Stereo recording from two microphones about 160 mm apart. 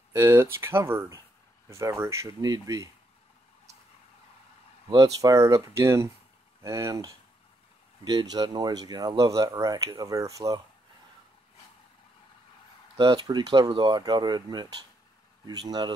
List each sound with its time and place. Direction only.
0.1 s speech: 20° right (ahead or behind)
4.8 s speech: 20° right (ahead or behind)
12.9 s speech: 30° right (ahead or behind)